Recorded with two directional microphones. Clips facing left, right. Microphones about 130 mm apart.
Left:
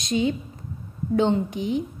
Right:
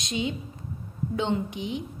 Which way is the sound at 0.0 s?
40° left (ahead or behind).